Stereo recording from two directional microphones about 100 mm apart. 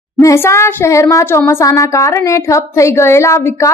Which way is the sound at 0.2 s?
30° left (ahead or behind).